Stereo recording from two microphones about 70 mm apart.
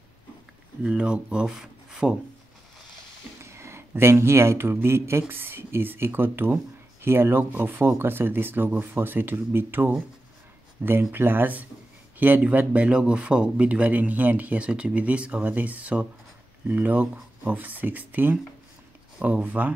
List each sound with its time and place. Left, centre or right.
0.8 s speech: centre
3.4 s speech: right